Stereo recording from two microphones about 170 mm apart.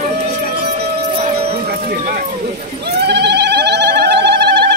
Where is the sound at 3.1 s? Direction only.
80° right.